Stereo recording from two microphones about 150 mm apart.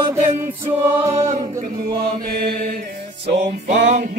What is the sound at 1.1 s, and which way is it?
A capella, 50° right (ahead or behind).